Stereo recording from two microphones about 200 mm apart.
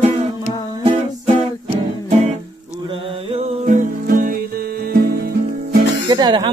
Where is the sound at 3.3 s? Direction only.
40° right (ahead or behind).